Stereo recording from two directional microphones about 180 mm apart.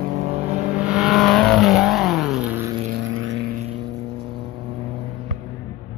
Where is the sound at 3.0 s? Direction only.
90° right.